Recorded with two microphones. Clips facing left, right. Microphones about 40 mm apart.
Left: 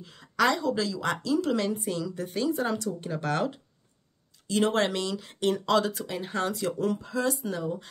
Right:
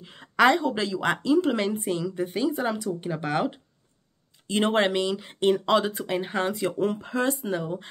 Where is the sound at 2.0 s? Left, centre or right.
Centre.